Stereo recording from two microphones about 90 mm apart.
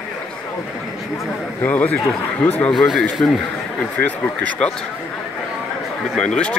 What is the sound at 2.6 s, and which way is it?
Speech, centre (ahead or behind).